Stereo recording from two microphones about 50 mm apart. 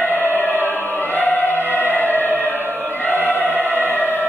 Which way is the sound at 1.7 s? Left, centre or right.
Left.